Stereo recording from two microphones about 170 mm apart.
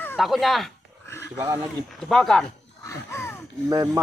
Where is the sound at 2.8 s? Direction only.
15° left (ahead or behind).